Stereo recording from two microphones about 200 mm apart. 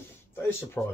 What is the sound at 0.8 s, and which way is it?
Speech, 5° left (ahead or behind).